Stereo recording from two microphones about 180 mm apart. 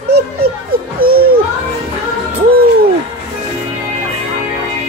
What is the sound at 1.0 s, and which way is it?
Children playing, 55° right (ahead or behind).